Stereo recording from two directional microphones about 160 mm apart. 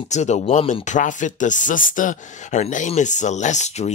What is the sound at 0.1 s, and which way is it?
Speech, 45° left (ahead or behind).